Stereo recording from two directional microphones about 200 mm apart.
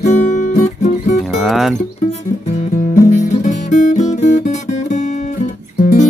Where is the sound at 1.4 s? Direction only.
Centre (ahead or behind).